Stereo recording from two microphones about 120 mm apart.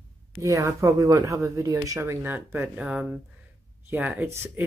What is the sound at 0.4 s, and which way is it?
Speech, 25° right (ahead or behind).